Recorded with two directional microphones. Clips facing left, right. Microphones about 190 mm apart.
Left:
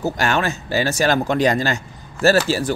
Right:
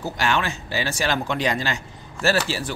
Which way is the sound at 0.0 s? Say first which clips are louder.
Left 4 dB; 45° left (ahead or behind).